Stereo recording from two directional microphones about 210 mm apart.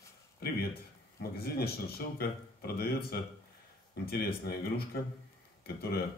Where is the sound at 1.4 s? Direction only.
45° left (ahead or behind).